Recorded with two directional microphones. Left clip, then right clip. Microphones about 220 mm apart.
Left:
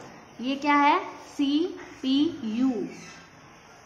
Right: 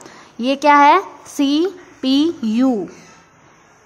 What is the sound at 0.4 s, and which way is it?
A woman's voice, 55° right (ahead or behind).